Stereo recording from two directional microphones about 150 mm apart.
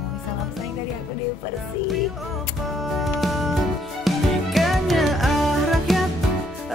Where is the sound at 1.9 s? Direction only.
Centre (ahead or behind).